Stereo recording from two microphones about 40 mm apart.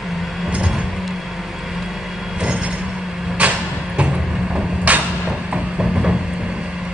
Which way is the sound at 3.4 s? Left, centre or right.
Right.